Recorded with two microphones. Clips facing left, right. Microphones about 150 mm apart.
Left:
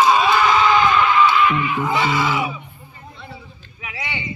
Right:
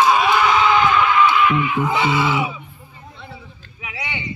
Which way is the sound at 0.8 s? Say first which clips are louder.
Even; 10° right (ahead or behind).